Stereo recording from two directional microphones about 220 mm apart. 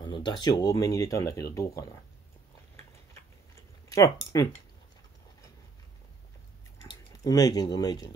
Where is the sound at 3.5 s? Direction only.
15° left (ahead or behind).